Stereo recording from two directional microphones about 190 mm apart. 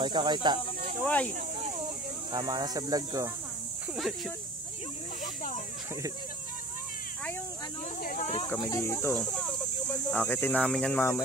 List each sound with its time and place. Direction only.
0.0 s speech: 25° right (ahead or behind)
1.0 s speech: 5° left (ahead or behind)
2.3 s speech: 20° right (ahead or behind)
3.9 s speech: centre (ahead or behind)
5.2 s snake: 45° left (ahead or behind)
8.0 s speech: 50° left (ahead or behind)
8.5 s speech: 20° left (ahead or behind)
9.1 s speech: centre (ahead or behind)